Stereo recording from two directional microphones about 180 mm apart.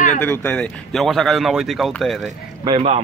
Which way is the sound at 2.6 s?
35° right (ahead or behind).